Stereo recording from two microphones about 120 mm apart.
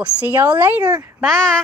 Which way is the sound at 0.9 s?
25° right (ahead or behind).